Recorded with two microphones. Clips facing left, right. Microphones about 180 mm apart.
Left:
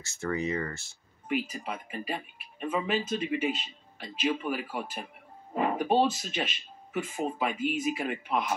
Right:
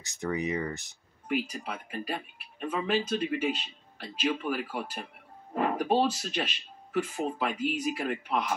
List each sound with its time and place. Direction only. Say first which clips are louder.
0.0 s speech: even; 15° right (ahead or behind)
1.3 s speech: even; centre (ahead or behind)